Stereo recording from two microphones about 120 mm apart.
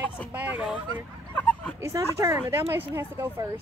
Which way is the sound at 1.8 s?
25° right (ahead or behind).